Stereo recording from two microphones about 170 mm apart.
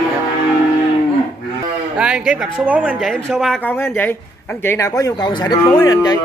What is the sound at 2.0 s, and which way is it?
Speech, 5° right (ahead or behind).